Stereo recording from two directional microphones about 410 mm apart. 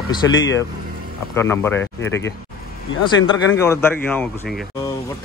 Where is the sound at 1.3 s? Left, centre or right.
Centre.